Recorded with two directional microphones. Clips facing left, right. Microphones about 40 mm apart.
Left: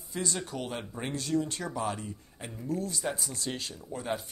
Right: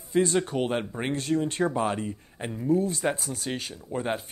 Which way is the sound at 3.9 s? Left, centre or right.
Right.